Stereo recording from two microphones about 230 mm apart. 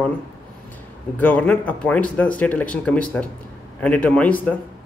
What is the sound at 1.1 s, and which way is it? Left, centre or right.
A man's voice, centre.